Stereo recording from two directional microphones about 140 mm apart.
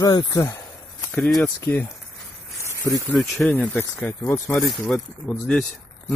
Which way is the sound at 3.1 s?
5° left (ahead or behind).